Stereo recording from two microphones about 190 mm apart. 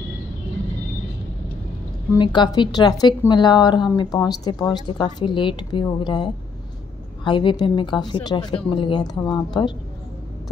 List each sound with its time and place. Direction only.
2.1 s a woman's voice: 25° left (ahead or behind)